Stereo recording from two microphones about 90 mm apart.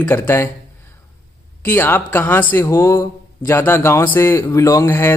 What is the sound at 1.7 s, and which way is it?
Speech, 25° left (ahead or behind).